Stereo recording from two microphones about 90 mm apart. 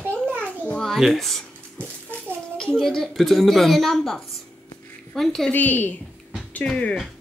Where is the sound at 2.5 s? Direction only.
5° left (ahead or behind).